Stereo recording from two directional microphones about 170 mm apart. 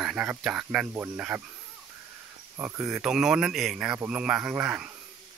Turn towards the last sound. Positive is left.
turn(degrees=-10)  # may be behind; listen again after turning